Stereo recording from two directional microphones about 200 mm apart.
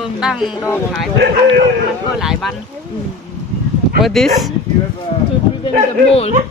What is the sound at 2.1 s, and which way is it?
Speech, centre (ahead or behind).